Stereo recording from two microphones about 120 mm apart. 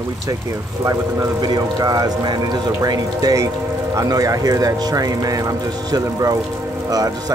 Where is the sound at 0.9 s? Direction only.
30° right (ahead or behind).